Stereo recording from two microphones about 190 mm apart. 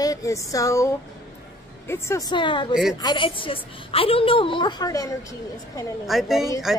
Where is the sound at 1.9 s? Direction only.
15° left (ahead or behind).